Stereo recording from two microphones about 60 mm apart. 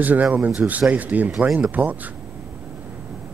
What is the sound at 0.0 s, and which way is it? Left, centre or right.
Speech, right.